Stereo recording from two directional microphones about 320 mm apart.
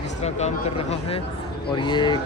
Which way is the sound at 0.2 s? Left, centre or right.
Centre.